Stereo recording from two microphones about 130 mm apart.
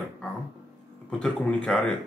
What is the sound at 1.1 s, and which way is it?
Speech, 5° left (ahead or behind).